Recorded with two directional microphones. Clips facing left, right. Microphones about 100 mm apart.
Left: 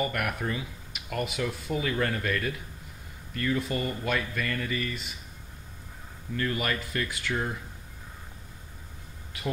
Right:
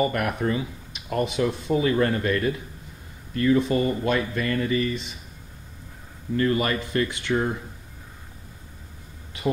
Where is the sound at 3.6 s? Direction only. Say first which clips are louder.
Right 8 dB; 20° right (ahead or behind).